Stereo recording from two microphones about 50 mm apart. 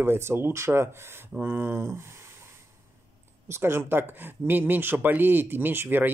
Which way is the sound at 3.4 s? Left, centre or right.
Right.